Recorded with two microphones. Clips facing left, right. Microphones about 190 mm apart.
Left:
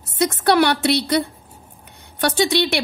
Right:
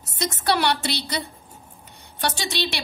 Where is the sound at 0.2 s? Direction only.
55° left (ahead or behind).